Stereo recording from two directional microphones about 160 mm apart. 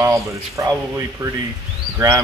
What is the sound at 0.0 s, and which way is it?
Speech, 20° right (ahead or behind).